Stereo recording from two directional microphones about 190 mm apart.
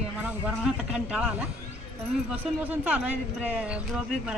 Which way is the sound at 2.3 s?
5° right (ahead or behind).